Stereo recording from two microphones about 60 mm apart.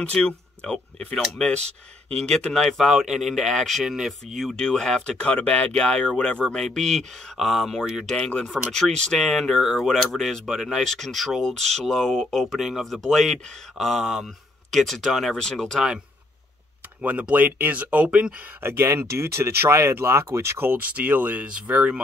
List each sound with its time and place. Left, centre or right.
0.1 s speech: centre
2.1 s speech: centre
4.3 s speech: centre
17.0 s speech: right
18.6 s speech: right
20.8 s speech: right